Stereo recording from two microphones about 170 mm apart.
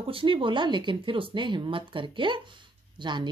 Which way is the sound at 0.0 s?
30° right (ahead or behind).